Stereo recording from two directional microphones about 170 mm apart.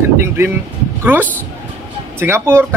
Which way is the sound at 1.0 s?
10° right (ahead or behind).